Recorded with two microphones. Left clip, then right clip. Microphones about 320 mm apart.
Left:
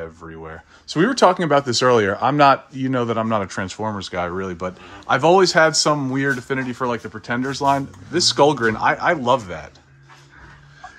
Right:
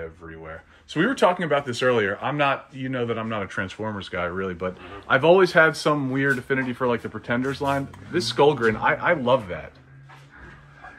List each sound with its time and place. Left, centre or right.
0.3 s speech: centre